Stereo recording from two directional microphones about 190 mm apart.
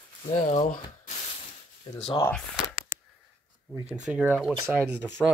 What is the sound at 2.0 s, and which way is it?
Speech, 20° left (ahead or behind).